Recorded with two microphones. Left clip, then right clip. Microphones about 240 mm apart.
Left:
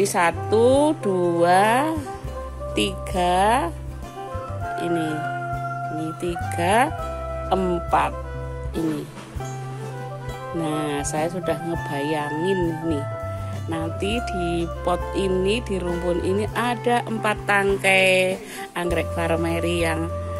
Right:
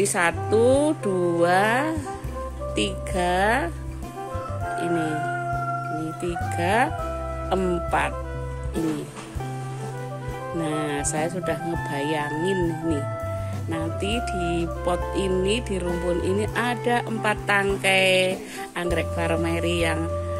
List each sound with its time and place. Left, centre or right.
0.0 s speech: centre
4.7 s speech: centre
6.2 s speech: centre
10.5 s speech: centre